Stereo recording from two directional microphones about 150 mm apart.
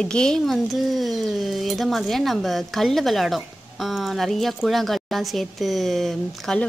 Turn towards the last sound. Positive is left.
turn(degrees=0)  # may be behind; listen again after turning